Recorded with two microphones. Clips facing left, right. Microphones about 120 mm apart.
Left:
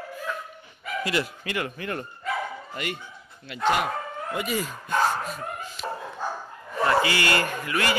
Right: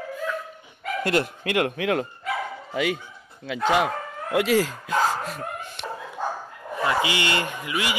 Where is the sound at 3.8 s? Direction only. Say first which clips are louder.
Right 2 dB; 90° right.